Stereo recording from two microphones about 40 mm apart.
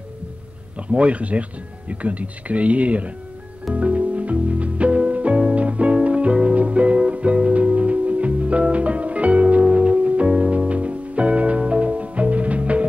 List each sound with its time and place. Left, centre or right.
0.7 s speech: right
3.7 s music: right